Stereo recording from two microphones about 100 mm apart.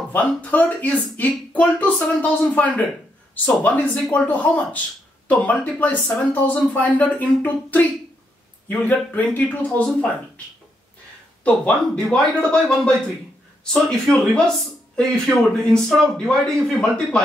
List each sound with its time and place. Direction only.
0.1 s speech: 15° left (ahead or behind)
11.4 s speech: 10° left (ahead or behind)